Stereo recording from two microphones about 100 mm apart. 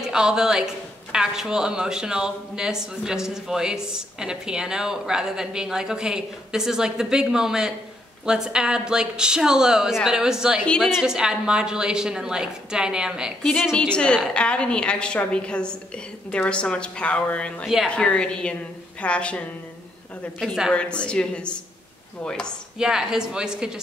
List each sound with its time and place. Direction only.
0.0 s a woman's voice: 5° right (ahead or behind)
13.7 s a woman's voice: 10° left (ahead or behind)
20.3 s speech: 5° right (ahead or behind)
20.7 s a woman's voice: 10° left (ahead or behind)
22.8 s a woman's voice: 5° right (ahead or behind)